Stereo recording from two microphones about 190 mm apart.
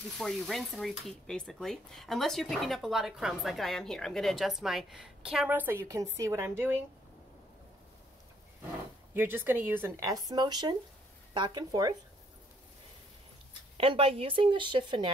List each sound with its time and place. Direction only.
0.2 s stir: centre (ahead or behind); by 6.0 s 15° right (ahead or behind)
6.1 s speech: 15° right (ahead or behind)
9.1 s speech: 10° right (ahead or behind)
13.7 s speech: 30° right (ahead or behind)